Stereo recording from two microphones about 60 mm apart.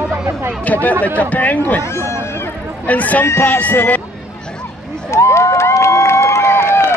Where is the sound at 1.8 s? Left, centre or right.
Left.